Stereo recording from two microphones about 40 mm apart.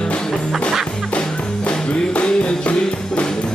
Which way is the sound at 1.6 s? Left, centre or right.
Left.